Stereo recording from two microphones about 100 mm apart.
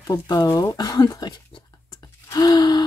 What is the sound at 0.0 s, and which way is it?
Speech, 35° left (ahead or behind).